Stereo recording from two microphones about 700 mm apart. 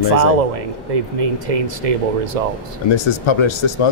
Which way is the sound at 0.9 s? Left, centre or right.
Right.